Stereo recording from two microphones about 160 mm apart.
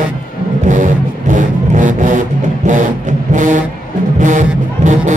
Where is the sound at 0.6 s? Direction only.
50° right (ahead or behind).